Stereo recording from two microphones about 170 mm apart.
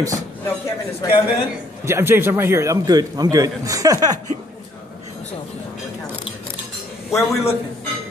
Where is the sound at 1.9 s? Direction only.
15° right (ahead or behind).